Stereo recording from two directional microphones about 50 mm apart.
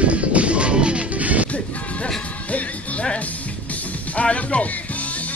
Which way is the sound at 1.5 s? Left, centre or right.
Left.